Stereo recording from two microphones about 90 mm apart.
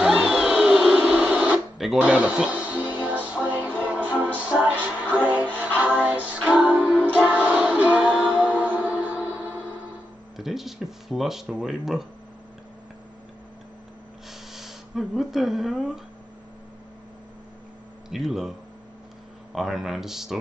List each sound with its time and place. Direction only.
0.0 s printer: 5° right (ahead or behind)
2.0 s music: 15° right (ahead or behind)
10.3 s speech: 5° right (ahead or behind)
14.5 s speech: 5° right (ahead or behind)
18.1 s speech: 5° right (ahead or behind)
19.5 s speech: 5° right (ahead or behind)